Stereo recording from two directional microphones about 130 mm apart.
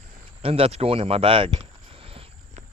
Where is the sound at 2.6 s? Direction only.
65° right (ahead or behind).